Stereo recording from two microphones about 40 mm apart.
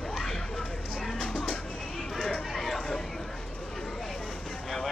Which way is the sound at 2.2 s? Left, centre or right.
Centre.